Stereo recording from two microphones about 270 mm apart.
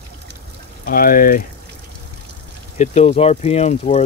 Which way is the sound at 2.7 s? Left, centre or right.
Left.